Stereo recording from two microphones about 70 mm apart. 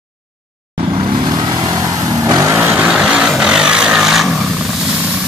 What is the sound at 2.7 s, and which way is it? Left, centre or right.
Vehicle, centre.